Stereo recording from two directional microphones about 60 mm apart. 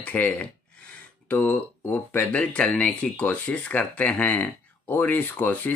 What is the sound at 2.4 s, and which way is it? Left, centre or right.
Speech, centre.